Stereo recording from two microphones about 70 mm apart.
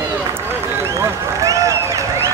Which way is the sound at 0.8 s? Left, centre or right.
Right.